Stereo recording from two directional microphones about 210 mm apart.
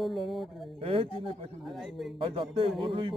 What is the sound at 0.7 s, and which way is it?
Speech, 25° right (ahead or behind).